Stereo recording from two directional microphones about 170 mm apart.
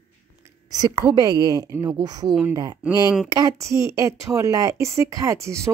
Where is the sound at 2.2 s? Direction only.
5° right (ahead or behind).